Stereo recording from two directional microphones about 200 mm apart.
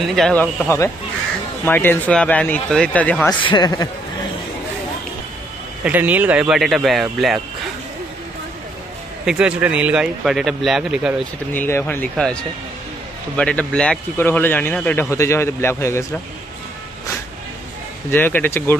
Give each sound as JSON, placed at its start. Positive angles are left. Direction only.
{"t": 0.1, "sound": "a man's voice", "side_deg": 5}
{"t": 3.4, "sound": "a man's voice", "side_deg": 20}
{"t": 5.9, "sound": "speech", "side_deg": -10}
{"t": 9.2, "sound": "speech", "side_deg": -5}
{"t": 11.5, "sound": "a man's voice", "side_deg": 10}
{"t": 18.1, "sound": "a man's voice", "side_deg": 10}